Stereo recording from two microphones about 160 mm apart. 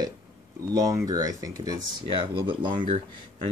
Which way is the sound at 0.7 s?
20° right (ahead or behind).